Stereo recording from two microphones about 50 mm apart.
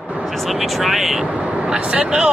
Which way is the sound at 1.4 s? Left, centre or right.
Centre.